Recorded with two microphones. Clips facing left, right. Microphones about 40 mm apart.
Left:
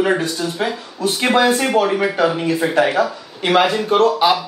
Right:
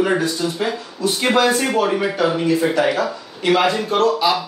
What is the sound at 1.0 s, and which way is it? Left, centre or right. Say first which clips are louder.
Speech: left 1 dB; left.